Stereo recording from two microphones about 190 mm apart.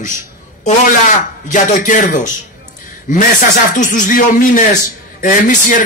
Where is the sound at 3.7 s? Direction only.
45° left (ahead or behind).